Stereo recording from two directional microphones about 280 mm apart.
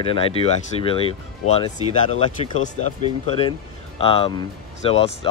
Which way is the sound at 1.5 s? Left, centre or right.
Left.